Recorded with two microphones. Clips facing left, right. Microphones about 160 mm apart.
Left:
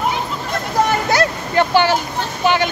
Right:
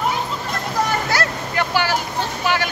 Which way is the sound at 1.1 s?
25° left (ahead or behind).